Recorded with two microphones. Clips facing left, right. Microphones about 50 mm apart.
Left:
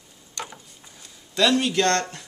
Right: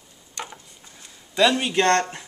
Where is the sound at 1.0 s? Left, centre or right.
Centre.